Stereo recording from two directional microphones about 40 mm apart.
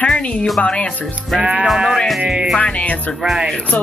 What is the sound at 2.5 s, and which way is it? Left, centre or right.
Speech, left.